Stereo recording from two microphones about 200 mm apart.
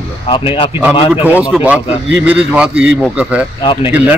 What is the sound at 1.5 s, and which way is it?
A man's voice, 5° right (ahead or behind).